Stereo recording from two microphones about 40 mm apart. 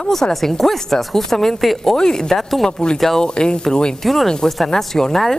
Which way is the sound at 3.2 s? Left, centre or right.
Left.